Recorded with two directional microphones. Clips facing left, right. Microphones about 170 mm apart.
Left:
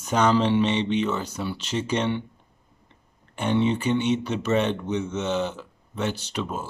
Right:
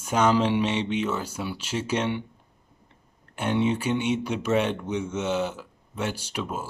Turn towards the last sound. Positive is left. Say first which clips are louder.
# left 1 dB
turn(degrees=-10)  # may be behind; listen again after turning